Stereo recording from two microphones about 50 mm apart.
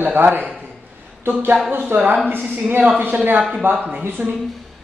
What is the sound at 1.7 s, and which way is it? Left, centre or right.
A woman's voice, right.